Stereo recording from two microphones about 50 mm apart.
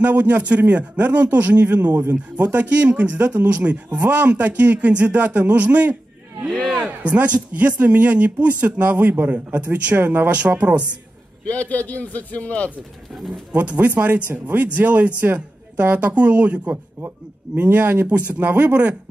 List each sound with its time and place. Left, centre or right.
0.0 s speech: right
6.5 s a sound: centre
6.9 s speech: right
11.4 s a man's voice: left
13.1 s speech: centre
13.5 s speech: right
17.6 s speech: right
18.4 s speech: right